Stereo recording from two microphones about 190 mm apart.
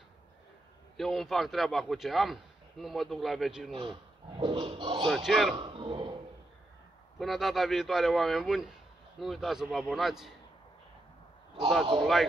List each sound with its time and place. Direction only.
0.9 s a man's voice: centre (ahead or behind)
3.7 s a sound: 25° right (ahead or behind)
5.0 s a man's voice: centre (ahead or behind)
5.6 s a man's voice: 25° right (ahead or behind)
7.2 s a man's voice: centre (ahead or behind)